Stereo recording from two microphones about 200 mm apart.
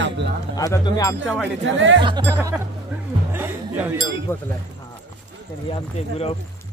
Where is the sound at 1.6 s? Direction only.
65° right (ahead or behind).